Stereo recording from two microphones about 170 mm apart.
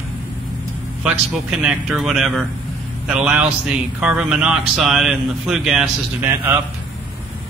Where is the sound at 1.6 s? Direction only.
Centre (ahead or behind).